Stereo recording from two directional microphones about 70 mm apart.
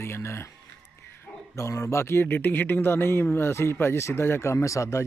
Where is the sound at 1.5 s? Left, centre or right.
Left.